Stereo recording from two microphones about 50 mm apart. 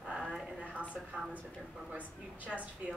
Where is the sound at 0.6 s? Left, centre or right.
Right.